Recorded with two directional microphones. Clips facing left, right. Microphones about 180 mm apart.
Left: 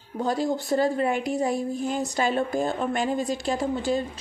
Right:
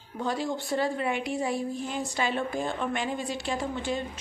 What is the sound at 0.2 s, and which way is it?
A woman's voice, 40° left (ahead or behind).